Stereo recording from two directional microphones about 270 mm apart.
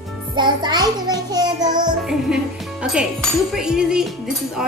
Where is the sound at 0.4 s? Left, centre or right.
Centre.